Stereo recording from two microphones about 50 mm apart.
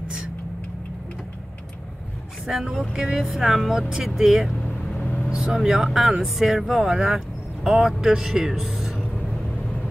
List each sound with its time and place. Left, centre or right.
2.4 s speech: centre
2.9 s speech: right
3.2 s speech: centre
5.0 s vehicle: left
5.3 s speech: centre